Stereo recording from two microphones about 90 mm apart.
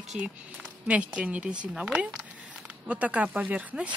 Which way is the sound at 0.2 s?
15° right (ahead or behind).